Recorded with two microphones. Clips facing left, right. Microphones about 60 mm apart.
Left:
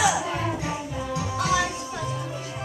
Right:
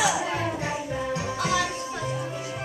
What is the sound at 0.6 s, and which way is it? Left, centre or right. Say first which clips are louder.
Music: right 1 dB; right.